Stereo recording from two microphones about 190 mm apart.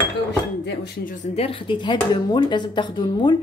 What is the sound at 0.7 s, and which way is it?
Speech, 45° left (ahead or behind).